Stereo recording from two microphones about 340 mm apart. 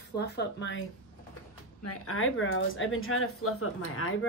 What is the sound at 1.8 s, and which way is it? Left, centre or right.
Speech, left.